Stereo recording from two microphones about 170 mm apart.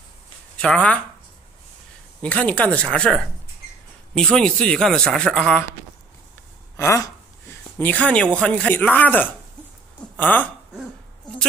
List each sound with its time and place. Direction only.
0.6 s a man's voice: 5° left (ahead or behind)
2.2 s a man's voice: 10° left (ahead or behind)
6.8 s speech: 15° left (ahead or behind)